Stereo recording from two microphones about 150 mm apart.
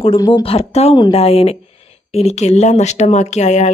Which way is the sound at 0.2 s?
35° left (ahead or behind).